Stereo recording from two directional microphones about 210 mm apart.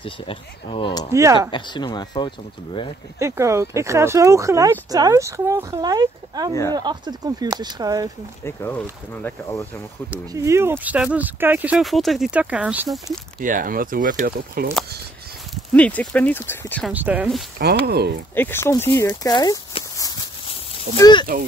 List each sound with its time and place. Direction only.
0.0 s speech: 25° left (ahead or behind)
1.1 s speech: 15° right (ahead or behind)
1.5 s speech: 20° left (ahead or behind)
3.2 s speech: 15° right (ahead or behind)
8.5 s speech: 10° left (ahead or behind)
10.1 s speech: 15° right (ahead or behind)
13.4 s speech: 40° right (ahead or behind)
15.5 s speech: 5° left (ahead or behind)
16.9 s speech: 5° right (ahead or behind)
17.6 s speech: 50° right (ahead or behind)
18.3 s speech: 10° left (ahead or behind)